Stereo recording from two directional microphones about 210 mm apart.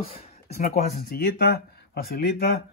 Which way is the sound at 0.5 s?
45° left (ahead or behind).